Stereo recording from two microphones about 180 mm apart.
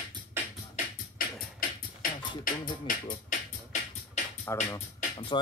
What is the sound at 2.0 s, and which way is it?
Beatboxing, 50° left (ahead or behind).